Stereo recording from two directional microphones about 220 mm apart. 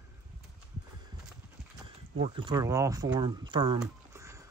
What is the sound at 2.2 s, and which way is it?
Speech, 20° right (ahead or behind).